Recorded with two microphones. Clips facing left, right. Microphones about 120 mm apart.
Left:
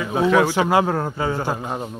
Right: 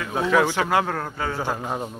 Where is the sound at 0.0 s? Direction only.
10° left (ahead or behind).